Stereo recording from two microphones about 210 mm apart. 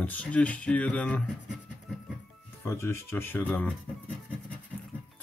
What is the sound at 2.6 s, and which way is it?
Speech, 10° left (ahead or behind).